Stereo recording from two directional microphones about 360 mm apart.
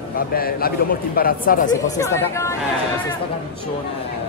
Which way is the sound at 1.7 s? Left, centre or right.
Centre.